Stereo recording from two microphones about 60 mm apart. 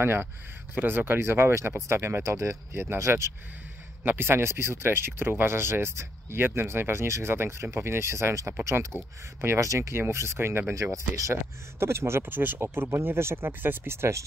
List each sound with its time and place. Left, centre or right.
0.0 s speech: right
4.0 s speech: right
8.9 s speech: right
9.4 s speech: right
10.7 s speech: right
11.8 s speech: right